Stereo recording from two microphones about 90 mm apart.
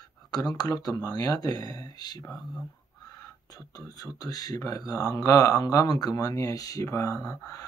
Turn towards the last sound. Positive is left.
turn(degrees=40)  # may be behind; listen again after turning